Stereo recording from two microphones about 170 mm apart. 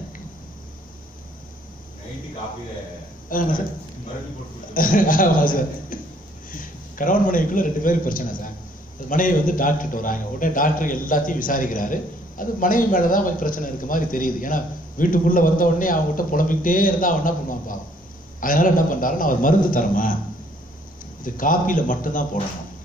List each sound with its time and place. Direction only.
3.3 s a man's voice: 55° left (ahead or behind)
4.7 s a man's voice: 55° left (ahead or behind)
21.2 s a man's voice: 55° left (ahead or behind)